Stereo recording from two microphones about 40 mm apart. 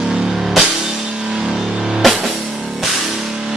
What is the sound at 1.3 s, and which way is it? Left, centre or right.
Music, centre.